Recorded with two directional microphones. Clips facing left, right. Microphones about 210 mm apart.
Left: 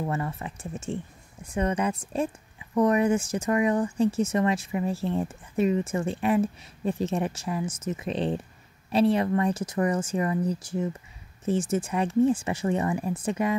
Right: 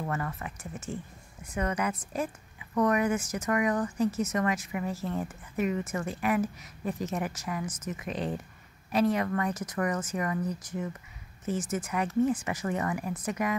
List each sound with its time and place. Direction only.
0.0 s speech: 25° left (ahead or behind)